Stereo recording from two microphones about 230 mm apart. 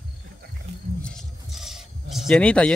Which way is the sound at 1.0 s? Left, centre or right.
Centre.